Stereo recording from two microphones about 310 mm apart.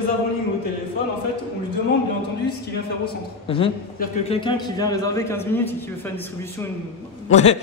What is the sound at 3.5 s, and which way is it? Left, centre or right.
A man's voice, centre.